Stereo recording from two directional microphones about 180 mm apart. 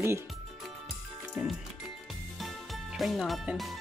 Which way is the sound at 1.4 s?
5° right (ahead or behind).